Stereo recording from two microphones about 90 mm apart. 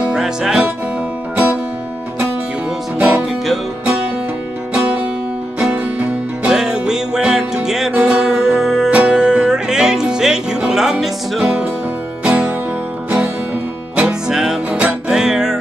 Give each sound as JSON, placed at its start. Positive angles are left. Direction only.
{"t": 0.0, "sound": "music", "side_deg": -5}
{"t": 1.3, "sound": "music", "side_deg": -15}
{"t": 3.0, "sound": "music", "side_deg": -15}
{"t": 5.6, "sound": "music", "side_deg": -10}
{"t": 13.9, "sound": "music", "side_deg": -10}